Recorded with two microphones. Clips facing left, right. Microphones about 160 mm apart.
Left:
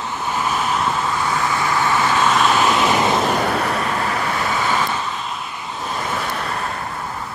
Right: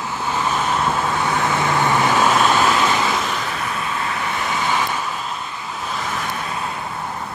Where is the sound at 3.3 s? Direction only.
55° left (ahead or behind).